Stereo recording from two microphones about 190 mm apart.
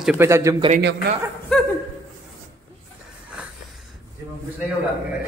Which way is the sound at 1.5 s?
5° left (ahead or behind).